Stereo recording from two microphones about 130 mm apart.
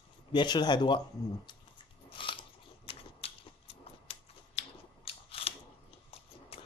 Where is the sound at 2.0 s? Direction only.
40° left (ahead or behind).